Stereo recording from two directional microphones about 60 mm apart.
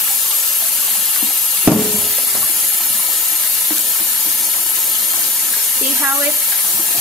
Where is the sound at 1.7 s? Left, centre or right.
Centre.